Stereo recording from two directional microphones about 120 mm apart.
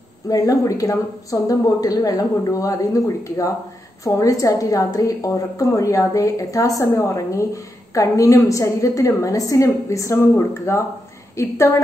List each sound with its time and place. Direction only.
0.3 s a woman's voice: 30° left (ahead or behind)